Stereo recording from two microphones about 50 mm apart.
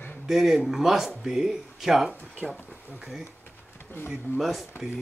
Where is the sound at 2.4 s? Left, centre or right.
Centre.